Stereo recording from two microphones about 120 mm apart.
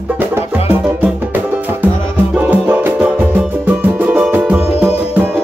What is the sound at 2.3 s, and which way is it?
Music, 15° right (ahead or behind).